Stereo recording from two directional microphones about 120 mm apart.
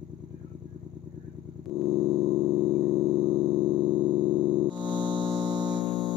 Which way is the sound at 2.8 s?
40° right (ahead or behind).